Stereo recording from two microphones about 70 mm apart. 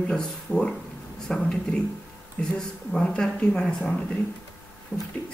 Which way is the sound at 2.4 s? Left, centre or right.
Centre.